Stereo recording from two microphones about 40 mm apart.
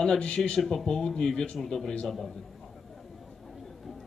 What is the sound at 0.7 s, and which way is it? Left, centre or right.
Speech, centre.